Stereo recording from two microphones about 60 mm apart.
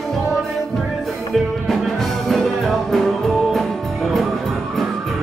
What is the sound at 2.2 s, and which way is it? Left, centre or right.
Music, centre.